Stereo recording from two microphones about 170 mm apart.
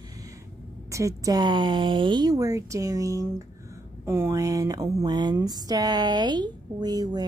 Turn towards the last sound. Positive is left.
turn(degrees=-25)  # may be behind; listen again after turning